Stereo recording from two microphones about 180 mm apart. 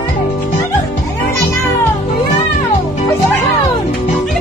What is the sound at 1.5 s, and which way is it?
Meow, 15° left (ahead or behind).